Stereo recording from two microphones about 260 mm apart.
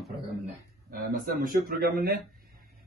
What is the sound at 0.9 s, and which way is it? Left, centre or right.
A man's voice, right.